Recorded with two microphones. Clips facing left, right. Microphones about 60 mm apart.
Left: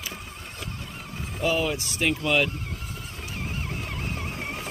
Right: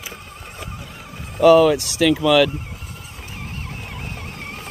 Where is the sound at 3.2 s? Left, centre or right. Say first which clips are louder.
Even; centre.